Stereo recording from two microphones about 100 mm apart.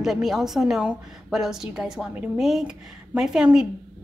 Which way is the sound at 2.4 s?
5° right (ahead or behind).